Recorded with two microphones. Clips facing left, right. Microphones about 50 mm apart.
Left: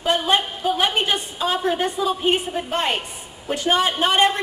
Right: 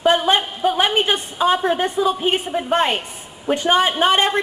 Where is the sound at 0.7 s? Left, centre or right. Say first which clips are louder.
Right 2 dB; right.